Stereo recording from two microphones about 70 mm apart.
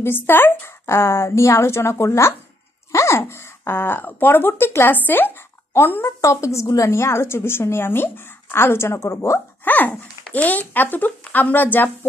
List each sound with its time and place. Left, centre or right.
0.0 s a woman's voice: left
6.2 s a woman's voice: left
9.7 s speech: left